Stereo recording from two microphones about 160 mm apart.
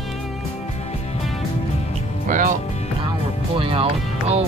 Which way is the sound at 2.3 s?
55° right (ahead or behind).